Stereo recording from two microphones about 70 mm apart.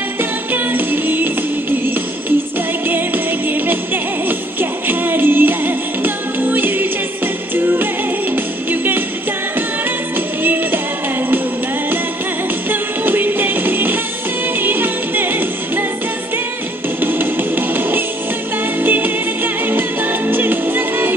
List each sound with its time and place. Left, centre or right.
0.2 s music: right
2.9 s music: right
12.6 s music: right
17.0 s music: right